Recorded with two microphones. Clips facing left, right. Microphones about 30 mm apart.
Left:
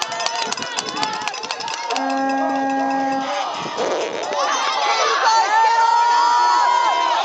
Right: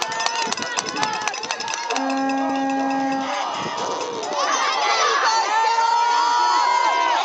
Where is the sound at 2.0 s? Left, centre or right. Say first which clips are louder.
Left 3 dB; centre.